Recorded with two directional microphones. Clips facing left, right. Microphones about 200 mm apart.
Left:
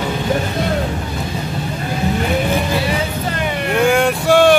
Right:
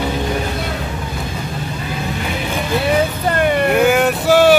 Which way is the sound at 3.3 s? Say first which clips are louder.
Right 6 dB; 55° right (ahead or behind).